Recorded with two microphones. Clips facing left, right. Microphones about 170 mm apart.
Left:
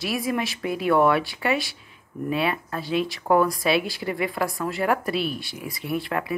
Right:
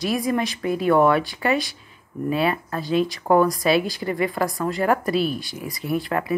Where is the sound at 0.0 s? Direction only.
5° left (ahead or behind).